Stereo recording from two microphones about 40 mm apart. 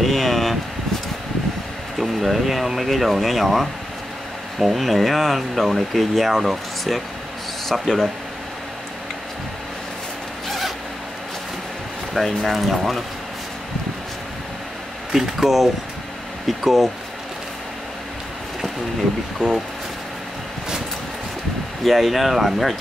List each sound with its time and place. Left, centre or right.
0.0 s a sound: centre
2.0 s speech: centre
12.1 s speech: centre
15.1 s speech: centre
19.4 s speech: left
21.8 s speech: centre